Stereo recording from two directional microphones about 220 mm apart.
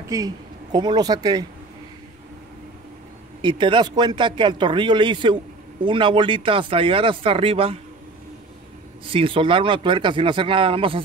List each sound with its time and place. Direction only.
0.1 s speech: 15° right (ahead or behind)
3.4 s speech: 20° right (ahead or behind)
9.0 s speech: 25° right (ahead or behind)